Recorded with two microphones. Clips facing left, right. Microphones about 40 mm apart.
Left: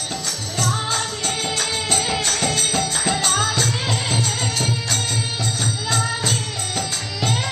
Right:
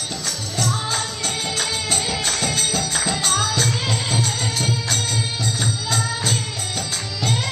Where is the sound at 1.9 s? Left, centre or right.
Centre.